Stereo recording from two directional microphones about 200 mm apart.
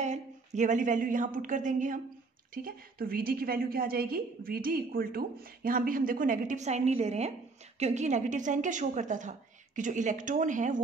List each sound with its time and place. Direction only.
0.0 s a woman's voice: 35° right (ahead or behind)